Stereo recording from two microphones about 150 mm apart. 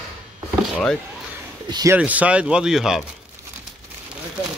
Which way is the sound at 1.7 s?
25° right (ahead or behind).